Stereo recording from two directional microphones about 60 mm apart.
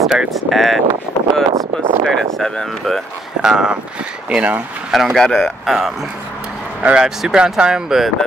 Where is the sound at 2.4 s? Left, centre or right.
Centre.